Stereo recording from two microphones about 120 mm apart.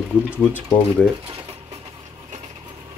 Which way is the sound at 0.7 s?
15° left (ahead or behind).